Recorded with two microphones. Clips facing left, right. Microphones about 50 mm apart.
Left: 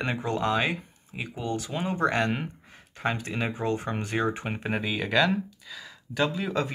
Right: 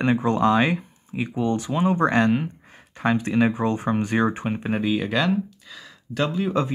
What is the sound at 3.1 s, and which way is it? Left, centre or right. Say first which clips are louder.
Speech: right 9 dB; centre.